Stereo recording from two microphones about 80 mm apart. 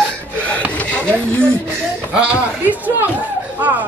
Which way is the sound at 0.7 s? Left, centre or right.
Centre.